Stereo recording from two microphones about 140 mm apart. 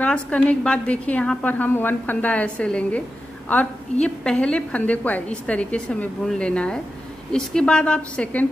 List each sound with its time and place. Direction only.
0.0 s a woman's voice: 10° left (ahead or behind)